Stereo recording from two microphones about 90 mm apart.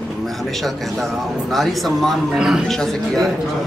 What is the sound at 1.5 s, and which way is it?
Speech, centre (ahead or behind).